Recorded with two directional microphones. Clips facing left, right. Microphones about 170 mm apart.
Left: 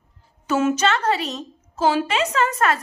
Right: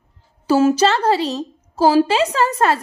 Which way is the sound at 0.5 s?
35° right (ahead or behind).